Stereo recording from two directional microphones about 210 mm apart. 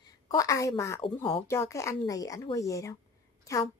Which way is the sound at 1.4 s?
15° left (ahead or behind).